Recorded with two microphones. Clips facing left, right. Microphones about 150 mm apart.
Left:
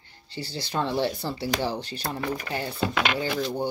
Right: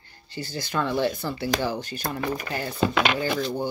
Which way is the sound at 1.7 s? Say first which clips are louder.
Right 1 dB; 45° right (ahead or behind).